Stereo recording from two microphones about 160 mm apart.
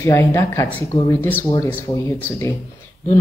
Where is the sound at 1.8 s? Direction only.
20° left (ahead or behind).